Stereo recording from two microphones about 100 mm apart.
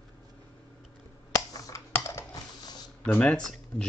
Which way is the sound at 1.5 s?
35° left (ahead or behind).